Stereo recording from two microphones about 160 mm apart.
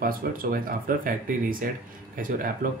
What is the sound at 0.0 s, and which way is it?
Speech, 60° right (ahead or behind).